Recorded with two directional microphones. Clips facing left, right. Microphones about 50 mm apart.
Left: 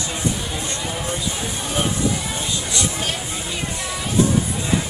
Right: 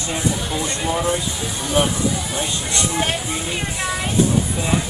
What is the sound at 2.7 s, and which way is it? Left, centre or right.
Speech, right.